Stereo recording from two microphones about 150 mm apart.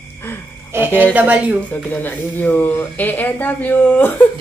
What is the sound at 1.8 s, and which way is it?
Speech, 10° left (ahead or behind).